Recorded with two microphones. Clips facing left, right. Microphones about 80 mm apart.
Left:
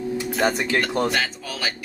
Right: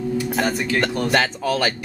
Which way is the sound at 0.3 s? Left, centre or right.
Centre.